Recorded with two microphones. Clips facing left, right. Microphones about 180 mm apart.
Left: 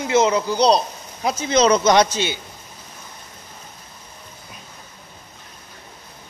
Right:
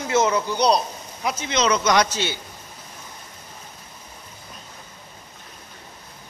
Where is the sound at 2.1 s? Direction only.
15° left (ahead or behind).